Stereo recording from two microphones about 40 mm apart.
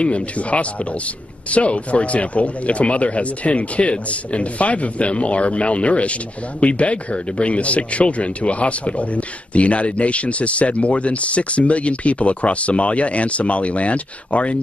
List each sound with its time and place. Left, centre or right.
0.0 s speech: left